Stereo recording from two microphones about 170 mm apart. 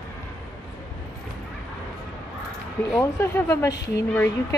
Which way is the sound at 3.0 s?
15° left (ahead or behind).